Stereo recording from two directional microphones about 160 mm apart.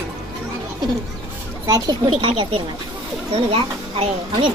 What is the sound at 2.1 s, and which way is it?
Speech, 35° right (ahead or behind).